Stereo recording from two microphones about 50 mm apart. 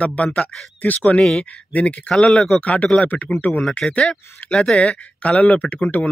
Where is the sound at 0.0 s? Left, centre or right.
Left.